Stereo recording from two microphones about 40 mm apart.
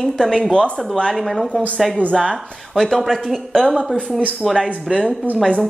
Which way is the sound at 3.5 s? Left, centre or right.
Centre.